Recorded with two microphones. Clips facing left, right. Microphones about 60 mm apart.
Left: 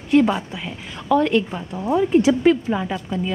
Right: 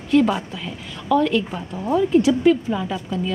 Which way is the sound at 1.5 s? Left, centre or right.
Centre.